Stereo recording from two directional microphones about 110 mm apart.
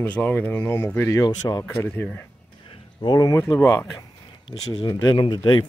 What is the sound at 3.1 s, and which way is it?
Speech, 35° left (ahead or behind).